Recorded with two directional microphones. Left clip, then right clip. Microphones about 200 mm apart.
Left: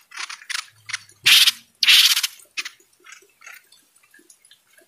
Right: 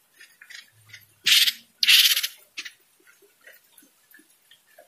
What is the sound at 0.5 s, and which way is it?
Mechanisms, 25° left (ahead or behind).